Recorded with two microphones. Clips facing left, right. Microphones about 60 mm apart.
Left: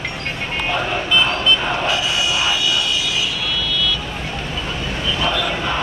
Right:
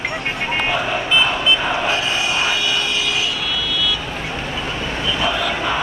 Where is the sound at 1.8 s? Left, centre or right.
Right.